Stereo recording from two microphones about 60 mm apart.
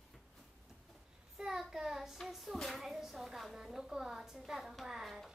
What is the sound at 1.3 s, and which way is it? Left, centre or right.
Child singing, centre.